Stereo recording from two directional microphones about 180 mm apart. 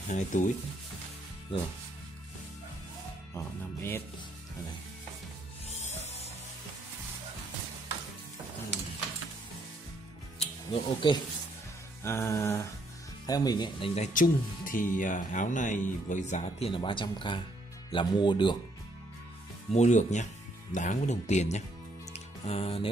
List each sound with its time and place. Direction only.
0.1 s speech: 45° left (ahead or behind)
3.3 s music: 15° left (ahead or behind)
5.7 s music: 40° left (ahead or behind)
10.7 s speech: 30° left (ahead or behind)
12.0 s music: 15° left (ahead or behind)
13.3 s speech: 20° left (ahead or behind)
19.7 s speech: 40° left (ahead or behind)
22.1 s music: 35° left (ahead or behind)